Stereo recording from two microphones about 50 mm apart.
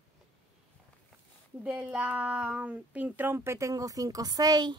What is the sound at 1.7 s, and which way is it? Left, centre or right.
Speech, right.